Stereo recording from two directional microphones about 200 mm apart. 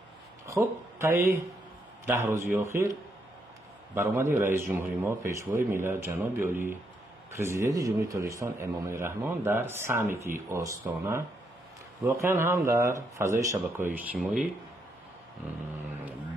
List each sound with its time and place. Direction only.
0.5 s a man's voice: 15° right (ahead or behind)
3.9 s a man's voice: 10° right (ahead or behind)